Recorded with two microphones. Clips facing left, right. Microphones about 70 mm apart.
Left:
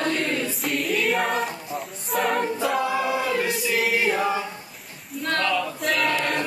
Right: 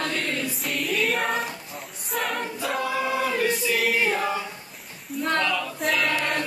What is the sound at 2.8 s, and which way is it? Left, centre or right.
Choir, centre.